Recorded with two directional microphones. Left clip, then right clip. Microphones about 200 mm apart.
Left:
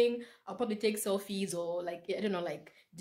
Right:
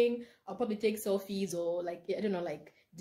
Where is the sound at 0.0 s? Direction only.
Centre (ahead or behind).